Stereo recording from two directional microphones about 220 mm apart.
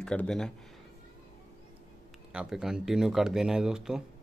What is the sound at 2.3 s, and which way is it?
Speech, 5° right (ahead or behind).